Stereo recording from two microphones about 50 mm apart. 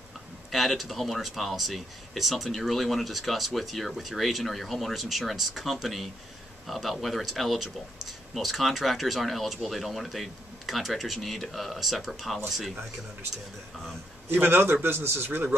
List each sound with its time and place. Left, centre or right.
0.5 s speech: centre
14.3 s a man's voice: right